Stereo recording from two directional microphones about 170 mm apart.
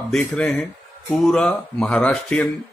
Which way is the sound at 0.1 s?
5° left (ahead or behind).